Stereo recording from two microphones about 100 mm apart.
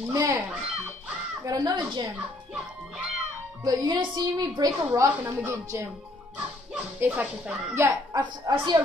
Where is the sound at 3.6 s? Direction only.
40° right (ahead or behind).